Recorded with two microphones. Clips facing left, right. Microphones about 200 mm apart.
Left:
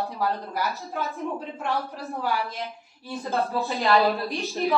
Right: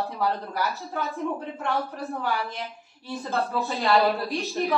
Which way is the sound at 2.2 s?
Centre (ahead or behind).